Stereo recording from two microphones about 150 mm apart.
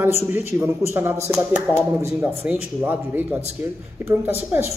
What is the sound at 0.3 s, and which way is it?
A man's voice, 15° right (ahead or behind).